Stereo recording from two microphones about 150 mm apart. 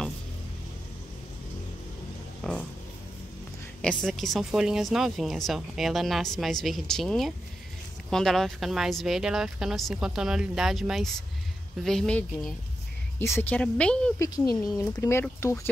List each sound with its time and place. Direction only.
2.4 s speech: centre (ahead or behind)
3.8 s a woman's voice: 5° left (ahead or behind)
14.1 s speech: 20° left (ahead or behind)